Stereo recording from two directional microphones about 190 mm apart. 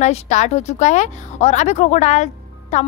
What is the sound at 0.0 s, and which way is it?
Speech, 40° left (ahead or behind).